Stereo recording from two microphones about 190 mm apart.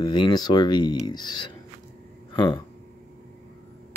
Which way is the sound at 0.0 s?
20° left (ahead or behind).